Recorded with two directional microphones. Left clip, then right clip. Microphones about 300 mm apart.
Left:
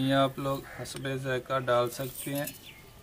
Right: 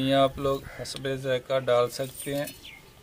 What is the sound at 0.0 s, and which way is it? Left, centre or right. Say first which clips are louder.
Speech: right 4 dB; right.